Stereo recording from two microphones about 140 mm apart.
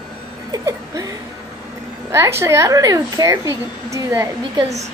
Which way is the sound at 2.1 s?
20° right (ahead or behind).